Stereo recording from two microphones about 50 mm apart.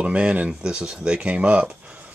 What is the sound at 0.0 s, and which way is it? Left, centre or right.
Speech, right.